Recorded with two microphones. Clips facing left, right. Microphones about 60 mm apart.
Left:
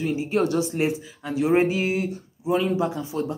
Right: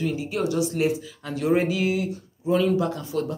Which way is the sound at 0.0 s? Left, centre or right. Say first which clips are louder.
Left 1 dB; left.